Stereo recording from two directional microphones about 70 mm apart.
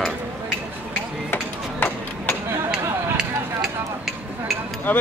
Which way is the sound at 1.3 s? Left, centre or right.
Left.